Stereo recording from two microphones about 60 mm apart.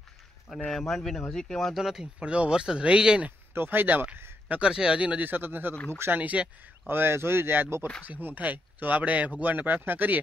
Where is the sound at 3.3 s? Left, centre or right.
Right.